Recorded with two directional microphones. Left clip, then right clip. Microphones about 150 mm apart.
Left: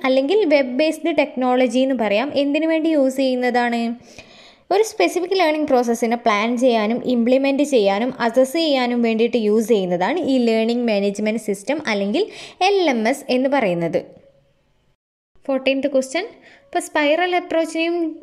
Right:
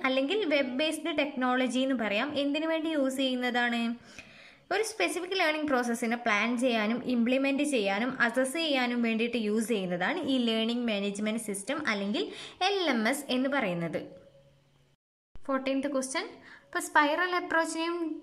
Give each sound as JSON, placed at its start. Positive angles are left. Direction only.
{"t": 0.0, "sound": "a woman's voice", "side_deg": 30}
{"t": 15.4, "sound": "a woman's voice", "side_deg": 30}